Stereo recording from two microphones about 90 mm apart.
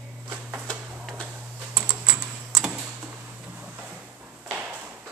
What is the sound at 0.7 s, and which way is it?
Tick-tock, 10° left (ahead or behind).